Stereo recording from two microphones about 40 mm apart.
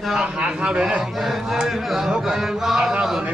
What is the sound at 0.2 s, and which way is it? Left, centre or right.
Speech, right.